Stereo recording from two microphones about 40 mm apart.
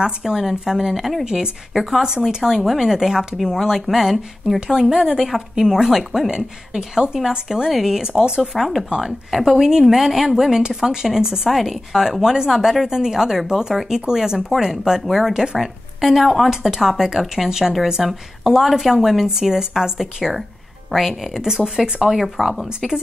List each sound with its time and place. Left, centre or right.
0.0 s a woman's voice: centre
1.2 s speech: centre
1.7 s a woman's voice: centre
8.1 s speech: right
8.4 s a woman's voice: centre
22.1 s speech: centre